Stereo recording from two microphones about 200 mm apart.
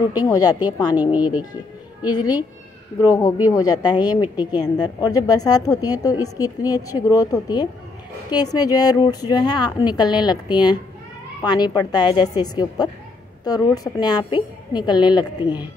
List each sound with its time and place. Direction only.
0.2 s speech: 20° left (ahead or behind)